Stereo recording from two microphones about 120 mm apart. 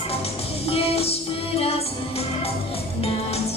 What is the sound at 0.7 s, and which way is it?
Music, 55° left (ahead or behind).